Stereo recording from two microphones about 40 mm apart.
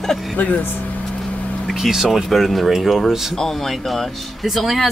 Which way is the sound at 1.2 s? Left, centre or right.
Centre.